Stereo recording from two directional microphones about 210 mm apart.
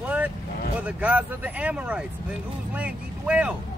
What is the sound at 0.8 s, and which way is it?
Speech, 5° right (ahead or behind).